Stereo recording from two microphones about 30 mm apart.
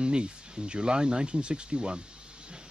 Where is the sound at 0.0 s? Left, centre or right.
Right.